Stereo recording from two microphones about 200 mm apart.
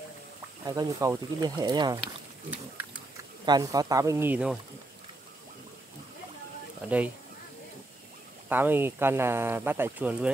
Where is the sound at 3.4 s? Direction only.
20° right (ahead or behind).